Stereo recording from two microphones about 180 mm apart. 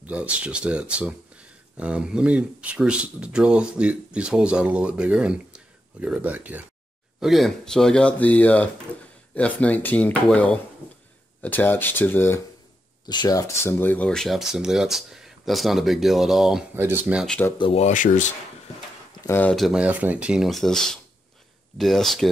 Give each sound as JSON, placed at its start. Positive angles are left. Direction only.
{"t": 0.0, "sound": "speech", "side_deg": -10}
{"t": 13.0, "sound": "speech", "side_deg": 25}
{"t": 17.6, "sound": "speech", "side_deg": 35}
{"t": 19.2, "sound": "speech", "side_deg": 10}
{"t": 19.5, "sound": "speech", "side_deg": 0}